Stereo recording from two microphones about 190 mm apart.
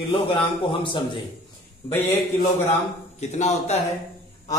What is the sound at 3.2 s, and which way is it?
Speech, 35° left (ahead or behind).